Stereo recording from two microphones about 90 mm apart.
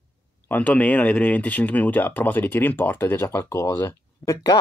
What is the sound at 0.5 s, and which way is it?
Speech, 15° left (ahead or behind).